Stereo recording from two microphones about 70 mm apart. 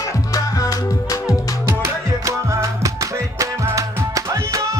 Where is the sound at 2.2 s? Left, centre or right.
Right.